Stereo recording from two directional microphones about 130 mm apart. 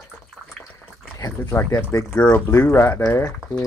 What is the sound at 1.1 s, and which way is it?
Speech, 25° left (ahead or behind).